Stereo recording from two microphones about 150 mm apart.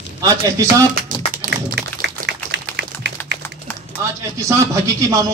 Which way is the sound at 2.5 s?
90° right.